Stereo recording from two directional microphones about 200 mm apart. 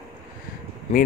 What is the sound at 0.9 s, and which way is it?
Speech, 35° left (ahead or behind).